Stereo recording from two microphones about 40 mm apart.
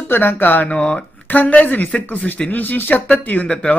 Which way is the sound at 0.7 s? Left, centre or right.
Left.